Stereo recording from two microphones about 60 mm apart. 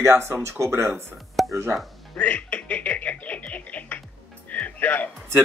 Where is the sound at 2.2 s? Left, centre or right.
Left.